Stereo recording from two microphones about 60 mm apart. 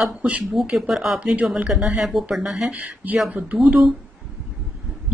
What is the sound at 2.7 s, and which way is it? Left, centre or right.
Speech, right.